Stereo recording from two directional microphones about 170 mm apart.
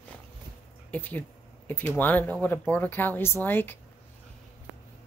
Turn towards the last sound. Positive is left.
turn(degrees=10)  # may be behind; listen again after turning